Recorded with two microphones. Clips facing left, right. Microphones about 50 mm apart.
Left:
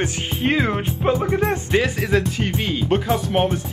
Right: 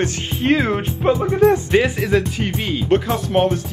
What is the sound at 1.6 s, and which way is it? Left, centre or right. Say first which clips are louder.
Speech: right 3 dB; right.